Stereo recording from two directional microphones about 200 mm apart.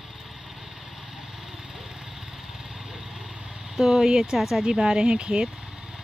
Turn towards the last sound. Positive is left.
turn(degrees=-5)  # may be behind; listen again after turning